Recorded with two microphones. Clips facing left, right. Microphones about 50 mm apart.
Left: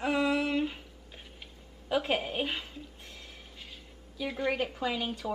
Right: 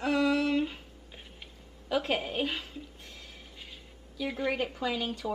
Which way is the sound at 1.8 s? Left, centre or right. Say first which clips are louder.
Even; centre.